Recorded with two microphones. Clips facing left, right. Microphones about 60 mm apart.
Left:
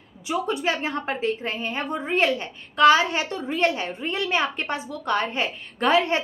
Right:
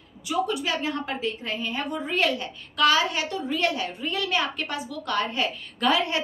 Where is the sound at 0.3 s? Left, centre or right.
Left.